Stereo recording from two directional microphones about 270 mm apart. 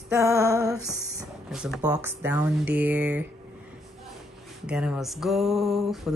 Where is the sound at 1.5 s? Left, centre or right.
Centre.